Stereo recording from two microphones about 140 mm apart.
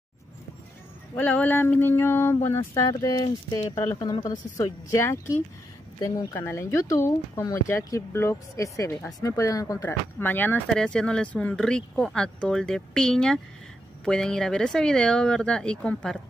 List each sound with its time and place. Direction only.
1.1 s speech: 10° left (ahead or behind)
10.1 s speech: 15° left (ahead or behind)